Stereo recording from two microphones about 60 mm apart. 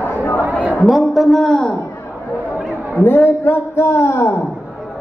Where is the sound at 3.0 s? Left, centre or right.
Left.